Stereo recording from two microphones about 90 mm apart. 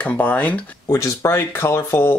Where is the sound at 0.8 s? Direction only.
30° left (ahead or behind).